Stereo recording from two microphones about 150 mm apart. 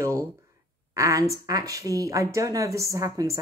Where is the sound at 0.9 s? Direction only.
20° right (ahead or behind).